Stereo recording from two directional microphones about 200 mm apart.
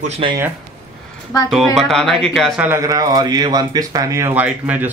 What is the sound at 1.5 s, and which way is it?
Speech, centre (ahead or behind).